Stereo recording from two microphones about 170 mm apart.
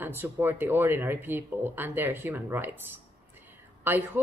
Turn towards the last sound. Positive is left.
turn(degrees=-10)  # may be behind; listen again after turning